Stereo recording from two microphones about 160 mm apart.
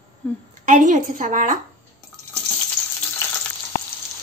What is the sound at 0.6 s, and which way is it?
Speech, 50° right (ahead or behind).